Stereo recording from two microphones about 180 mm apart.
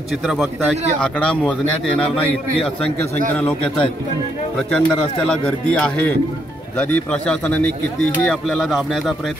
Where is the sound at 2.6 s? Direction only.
30° left (ahead or behind).